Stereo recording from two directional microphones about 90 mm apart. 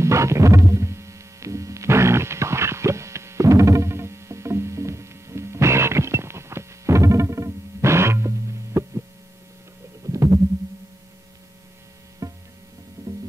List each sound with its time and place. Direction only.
0.0 s hum: 35° right (ahead or behind)
10.0 s stomach rumble: 35° right (ahead or behind)
12.2 s music: 35° right (ahead or behind)